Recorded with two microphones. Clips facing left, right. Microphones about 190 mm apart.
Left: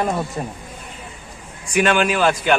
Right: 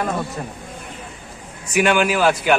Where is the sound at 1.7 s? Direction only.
10° right (ahead or behind).